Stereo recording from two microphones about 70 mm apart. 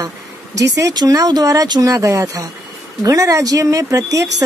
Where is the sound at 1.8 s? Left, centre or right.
Right.